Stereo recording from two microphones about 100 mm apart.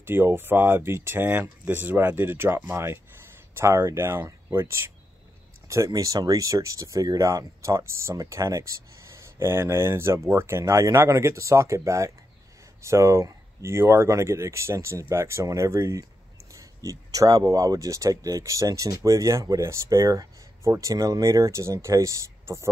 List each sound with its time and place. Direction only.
0.0 s speech: 20° right (ahead or behind)
5.9 s speech: 35° right (ahead or behind)